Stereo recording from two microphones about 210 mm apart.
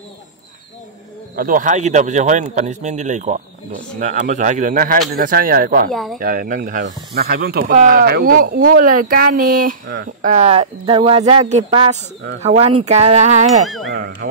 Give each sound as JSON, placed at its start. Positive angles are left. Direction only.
{"t": 1.3, "sound": "a man's voice", "side_deg": -40}
{"t": 5.9, "sound": "speech", "side_deg": 0}
{"t": 6.1, "sound": "a man's voice", "side_deg": -40}
{"t": 10.3, "sound": "a man's voice", "side_deg": -30}
{"t": 13.9, "sound": "speech", "side_deg": -45}